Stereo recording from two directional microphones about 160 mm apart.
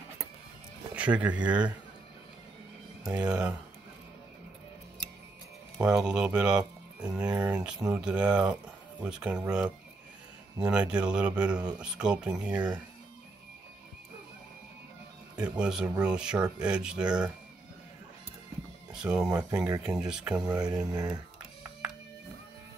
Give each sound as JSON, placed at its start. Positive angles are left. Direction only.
{"t": 0.9, "sound": "speech", "side_deg": -10}
{"t": 3.1, "sound": "speech", "side_deg": -5}
{"t": 5.8, "sound": "speech", "side_deg": -5}
{"t": 15.3, "sound": "speech", "side_deg": -5}
{"t": 18.9, "sound": "speech", "side_deg": -5}
{"t": 19.3, "sound": "speech", "side_deg": -20}
{"t": 19.8, "sound": "speech", "side_deg": -5}
{"t": 20.8, "sound": "speech", "side_deg": -25}